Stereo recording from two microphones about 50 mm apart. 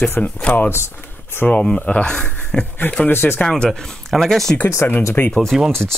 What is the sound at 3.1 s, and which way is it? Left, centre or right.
Speech, left.